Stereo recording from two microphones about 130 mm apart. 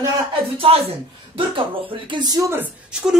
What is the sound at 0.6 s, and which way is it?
Speech, 50° right (ahead or behind).